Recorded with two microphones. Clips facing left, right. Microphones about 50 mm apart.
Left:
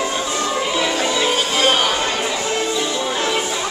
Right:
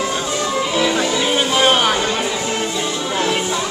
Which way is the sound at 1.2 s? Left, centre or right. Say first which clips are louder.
Right 3 dB; centre.